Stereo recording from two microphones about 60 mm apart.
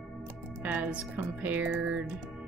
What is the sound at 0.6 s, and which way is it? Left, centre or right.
Speech, right.